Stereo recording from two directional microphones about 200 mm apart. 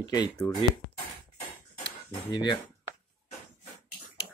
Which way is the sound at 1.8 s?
20° left (ahead or behind).